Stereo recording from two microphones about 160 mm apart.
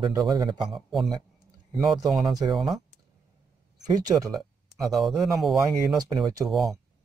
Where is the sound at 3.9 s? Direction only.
25° right (ahead or behind).